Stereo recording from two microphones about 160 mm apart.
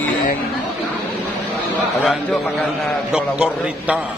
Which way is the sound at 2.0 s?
Centre (ahead or behind).